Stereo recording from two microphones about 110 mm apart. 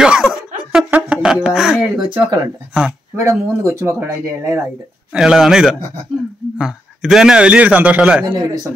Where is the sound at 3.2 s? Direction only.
25° right (ahead or behind).